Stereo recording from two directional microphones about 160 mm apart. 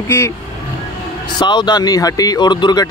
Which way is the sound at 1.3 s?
30° left (ahead or behind).